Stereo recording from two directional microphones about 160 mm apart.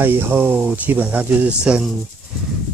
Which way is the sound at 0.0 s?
15° right (ahead or behind).